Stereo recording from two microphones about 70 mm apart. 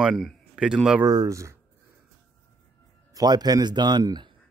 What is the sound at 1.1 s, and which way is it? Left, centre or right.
Speech, right.